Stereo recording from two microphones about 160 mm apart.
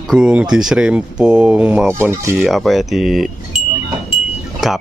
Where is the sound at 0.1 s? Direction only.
5° right (ahead or behind).